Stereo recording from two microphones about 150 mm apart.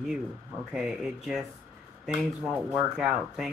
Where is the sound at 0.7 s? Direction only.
Centre (ahead or behind).